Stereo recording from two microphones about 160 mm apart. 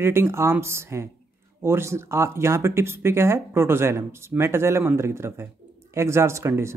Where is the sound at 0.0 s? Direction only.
15° right (ahead or behind).